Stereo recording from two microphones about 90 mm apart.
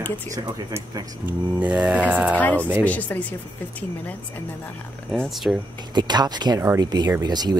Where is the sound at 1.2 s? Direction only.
15° right (ahead or behind).